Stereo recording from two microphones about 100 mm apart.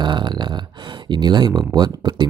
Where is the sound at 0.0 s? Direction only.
50° right (ahead or behind).